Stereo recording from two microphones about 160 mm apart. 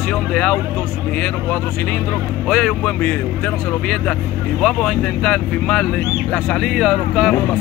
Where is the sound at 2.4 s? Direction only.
5° left (ahead or behind).